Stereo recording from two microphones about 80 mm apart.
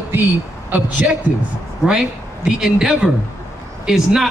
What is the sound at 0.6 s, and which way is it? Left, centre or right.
Speech, centre.